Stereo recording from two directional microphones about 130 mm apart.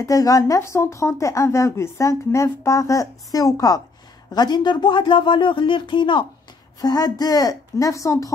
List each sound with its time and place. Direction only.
0.0 s speech: 25° left (ahead or behind)